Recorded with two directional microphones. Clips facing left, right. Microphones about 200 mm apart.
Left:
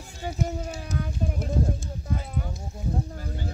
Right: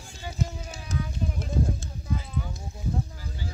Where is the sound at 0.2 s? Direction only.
50° left (ahead or behind).